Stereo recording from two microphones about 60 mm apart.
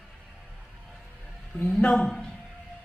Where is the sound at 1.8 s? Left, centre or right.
Centre.